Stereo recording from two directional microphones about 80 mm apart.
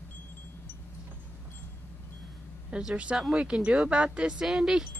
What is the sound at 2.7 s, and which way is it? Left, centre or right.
Speech, centre.